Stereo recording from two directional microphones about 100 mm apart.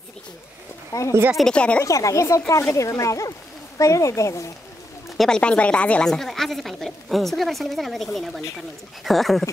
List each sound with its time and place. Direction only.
0.9 s speech: 30° left (ahead or behind)
1.3 s speech: 5° left (ahead or behind)
1.8 s speech: 35° left (ahead or behind)
5.1 s a woman's voice: 5° left (ahead or behind)